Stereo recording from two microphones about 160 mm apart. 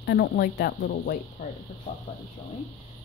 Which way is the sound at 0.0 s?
80° left.